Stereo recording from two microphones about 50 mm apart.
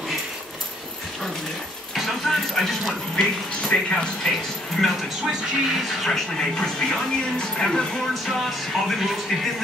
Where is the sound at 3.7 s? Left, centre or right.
Left.